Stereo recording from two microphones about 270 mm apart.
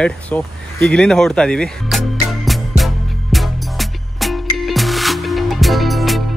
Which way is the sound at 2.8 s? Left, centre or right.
Centre.